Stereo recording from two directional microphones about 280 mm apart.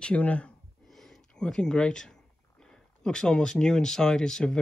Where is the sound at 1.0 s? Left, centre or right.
Centre.